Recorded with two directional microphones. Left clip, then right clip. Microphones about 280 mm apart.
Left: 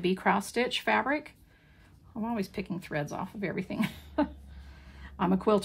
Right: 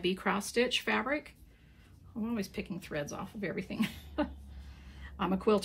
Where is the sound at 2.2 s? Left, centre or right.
Left.